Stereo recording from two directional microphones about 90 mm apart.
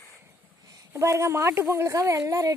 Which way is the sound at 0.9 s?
35° right (ahead or behind).